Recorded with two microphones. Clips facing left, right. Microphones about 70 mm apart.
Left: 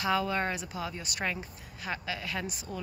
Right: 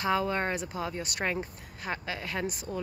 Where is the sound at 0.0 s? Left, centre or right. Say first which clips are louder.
Right 1 dB; right.